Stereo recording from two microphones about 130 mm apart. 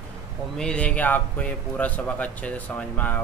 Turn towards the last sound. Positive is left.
turn(degrees=15)  # may be behind; listen again after turning